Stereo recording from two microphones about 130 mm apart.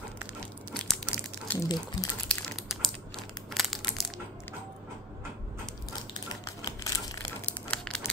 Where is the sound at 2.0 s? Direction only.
30° left (ahead or behind).